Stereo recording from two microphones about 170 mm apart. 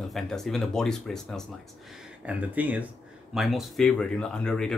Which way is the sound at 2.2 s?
10° right (ahead or behind).